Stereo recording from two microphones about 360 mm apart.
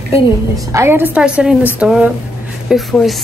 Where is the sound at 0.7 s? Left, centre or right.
Centre.